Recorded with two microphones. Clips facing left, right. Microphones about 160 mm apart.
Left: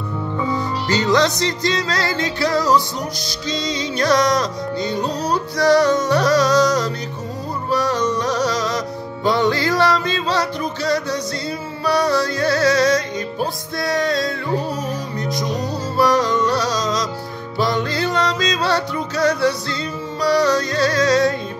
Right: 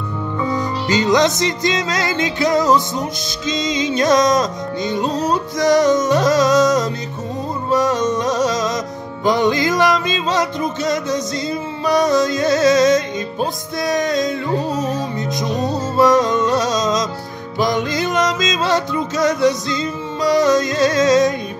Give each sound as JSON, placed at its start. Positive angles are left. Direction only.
{"t": 0.6, "sound": "music", "side_deg": -20}